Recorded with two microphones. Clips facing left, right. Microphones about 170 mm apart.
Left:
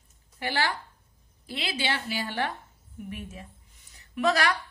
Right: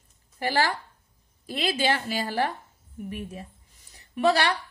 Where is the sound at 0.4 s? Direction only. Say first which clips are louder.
Right 4 dB; 40° right (ahead or behind).